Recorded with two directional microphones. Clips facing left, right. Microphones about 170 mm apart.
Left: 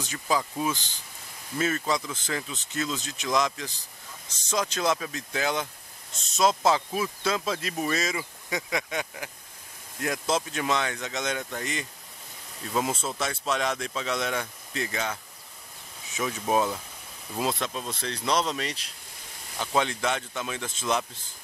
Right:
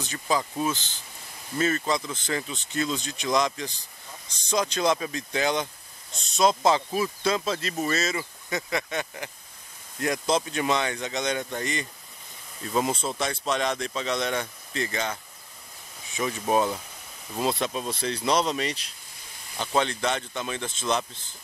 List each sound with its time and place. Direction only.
0.0 s speech: 10° left (ahead or behind)
1.6 s speech: 5° left (ahead or behind)
16.2 s speech: 5° left (ahead or behind)